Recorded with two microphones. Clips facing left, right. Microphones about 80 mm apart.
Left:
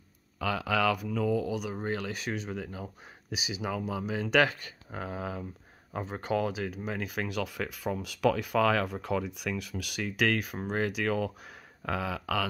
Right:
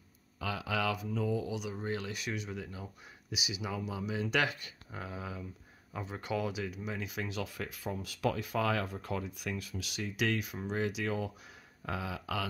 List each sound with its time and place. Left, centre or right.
0.4 s speech: left
1.4 s speech: left
6.9 s speech: left
10.4 s speech: left
11.8 s speech: left